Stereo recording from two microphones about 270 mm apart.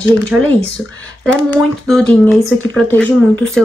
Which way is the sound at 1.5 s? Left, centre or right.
Centre.